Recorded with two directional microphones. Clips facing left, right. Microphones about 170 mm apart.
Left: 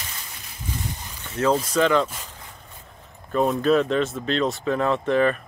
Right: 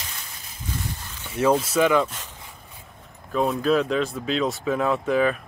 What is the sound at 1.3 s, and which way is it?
Speech, 10° right (ahead or behind).